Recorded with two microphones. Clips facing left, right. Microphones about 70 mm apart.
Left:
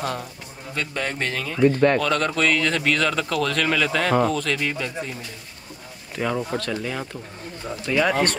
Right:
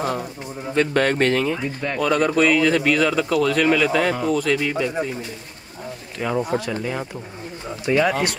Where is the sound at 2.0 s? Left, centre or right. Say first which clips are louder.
Right 4 dB; centre.